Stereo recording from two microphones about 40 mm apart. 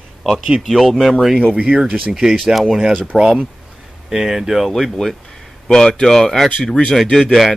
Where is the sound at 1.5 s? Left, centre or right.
Right.